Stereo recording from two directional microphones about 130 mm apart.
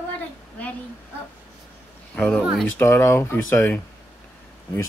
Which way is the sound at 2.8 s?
20° left (ahead or behind).